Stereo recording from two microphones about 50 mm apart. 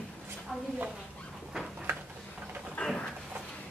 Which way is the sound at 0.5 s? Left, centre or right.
Centre.